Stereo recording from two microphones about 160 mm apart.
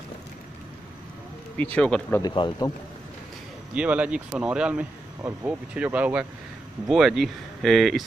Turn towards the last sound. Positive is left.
turn(degrees=0)  # may be behind; listen again after turning